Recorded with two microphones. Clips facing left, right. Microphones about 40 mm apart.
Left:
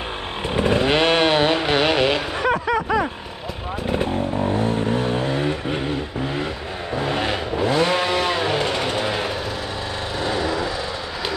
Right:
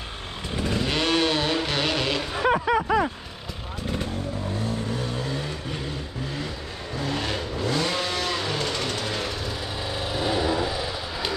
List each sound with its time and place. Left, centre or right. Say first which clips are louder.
0.5 s chainsaw: left 8 dB; left
2.4 s a sound: even; centre
3.8 s vehicle: left 7 dB; left
10.2 s vehicle: left 1 dB; centre